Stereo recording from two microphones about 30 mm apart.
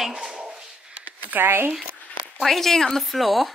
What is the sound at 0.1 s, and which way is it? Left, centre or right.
Dog, centre.